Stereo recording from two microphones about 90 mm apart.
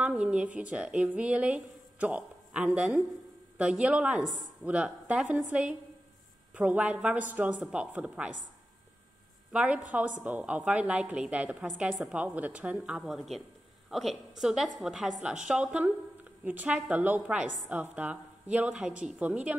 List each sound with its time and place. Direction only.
0.0 s a woman's voice: 10° right (ahead or behind)
4.6 s a woman's voice: 15° right (ahead or behind)
9.5 s a woman's voice: 15° right (ahead or behind)